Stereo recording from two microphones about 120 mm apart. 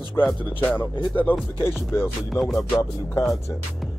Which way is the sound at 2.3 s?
5° left (ahead or behind).